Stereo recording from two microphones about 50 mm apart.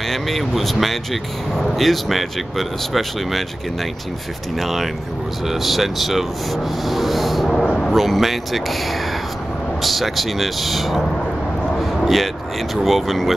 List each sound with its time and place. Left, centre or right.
0.1 s speech: centre
4.6 s speech: centre
7.6 s speech: centre
7.9 s speech: centre
9.8 s speech: centre
11.8 s a sound: centre
12.7 s speech: centre